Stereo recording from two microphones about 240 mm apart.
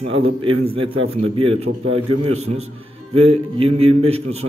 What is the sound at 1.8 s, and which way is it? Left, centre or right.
Speech, right.